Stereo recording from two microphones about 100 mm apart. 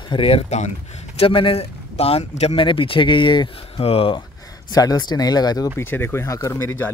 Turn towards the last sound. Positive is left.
turn(degrees=25)  # may be behind; listen again after turning